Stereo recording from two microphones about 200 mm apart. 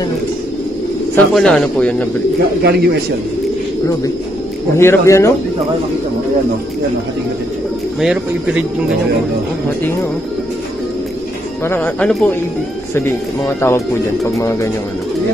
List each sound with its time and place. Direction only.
1.1 s speech: centre (ahead or behind)
2.6 s a man's voice: 55° right (ahead or behind)
4.7 s speech: 15° left (ahead or behind)
8.0 s speech: 5° right (ahead or behind)
11.6 s speech: 10° left (ahead or behind)